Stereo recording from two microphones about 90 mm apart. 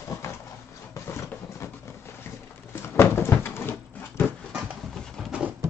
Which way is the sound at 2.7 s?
25° left (ahead or behind).